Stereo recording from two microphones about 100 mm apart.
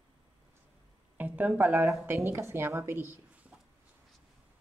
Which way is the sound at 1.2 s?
15° right (ahead or behind).